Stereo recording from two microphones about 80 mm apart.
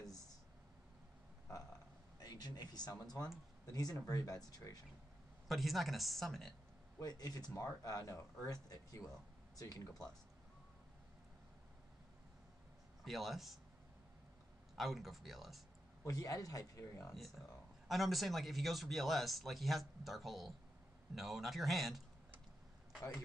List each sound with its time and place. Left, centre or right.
2.1 s speech: left
5.5 s speech: centre
7.0 s speech: left
13.0 s speech: centre
14.8 s speech: centre
16.0 s speech: left
17.8 s speech: centre